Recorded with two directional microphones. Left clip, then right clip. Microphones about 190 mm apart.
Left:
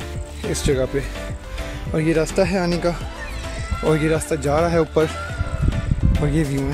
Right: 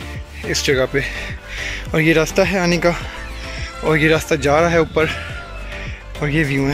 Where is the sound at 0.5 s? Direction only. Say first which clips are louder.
Right 5 dB; 15° left (ahead or behind).